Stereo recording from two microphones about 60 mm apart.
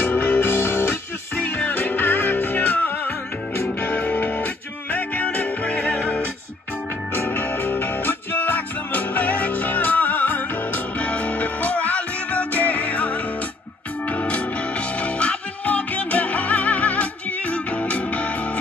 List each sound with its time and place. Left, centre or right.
0.0 s music: left
7.2 s music: left